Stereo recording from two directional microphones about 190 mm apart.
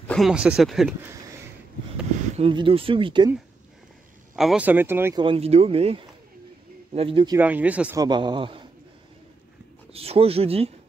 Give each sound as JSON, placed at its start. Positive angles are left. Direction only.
{"t": 0.1, "sound": "speech", "side_deg": 0}
{"t": 2.3, "sound": "speech", "side_deg": -30}
{"t": 4.4, "sound": "speech", "side_deg": -5}
{"t": 5.2, "sound": "speech", "side_deg": -30}
{"t": 7.3, "sound": "speech", "side_deg": -10}
{"t": 8.0, "sound": "speech", "side_deg": -25}
{"t": 9.9, "sound": "speech", "side_deg": -30}